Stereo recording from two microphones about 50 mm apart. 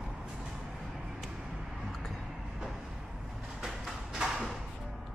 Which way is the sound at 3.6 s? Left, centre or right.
Centre.